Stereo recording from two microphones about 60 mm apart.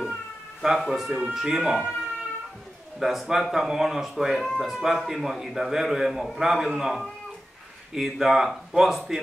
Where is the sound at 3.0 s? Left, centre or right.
Centre.